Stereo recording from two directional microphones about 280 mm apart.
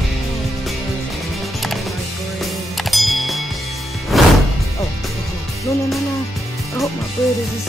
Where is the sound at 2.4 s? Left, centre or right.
Centre.